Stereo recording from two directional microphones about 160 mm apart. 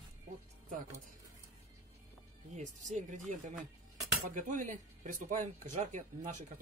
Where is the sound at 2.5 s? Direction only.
50° right (ahead or behind).